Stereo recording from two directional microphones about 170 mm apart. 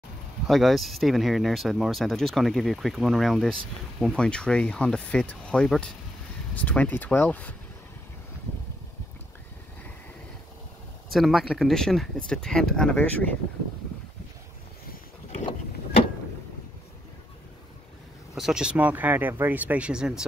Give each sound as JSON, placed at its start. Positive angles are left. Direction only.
{"t": 0.5, "sound": "speech", "side_deg": 0}
{"t": 11.1, "sound": "speech", "side_deg": 0}
{"t": 15.4, "sound": "vehicle", "side_deg": 30}
{"t": 18.3, "sound": "speech", "side_deg": -5}